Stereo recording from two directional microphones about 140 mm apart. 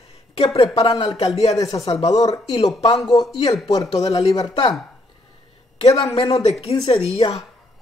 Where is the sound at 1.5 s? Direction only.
25° left (ahead or behind).